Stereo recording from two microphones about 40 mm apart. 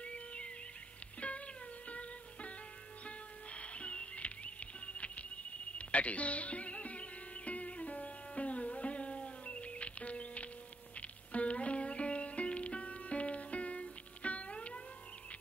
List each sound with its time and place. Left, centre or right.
0.0 s music: left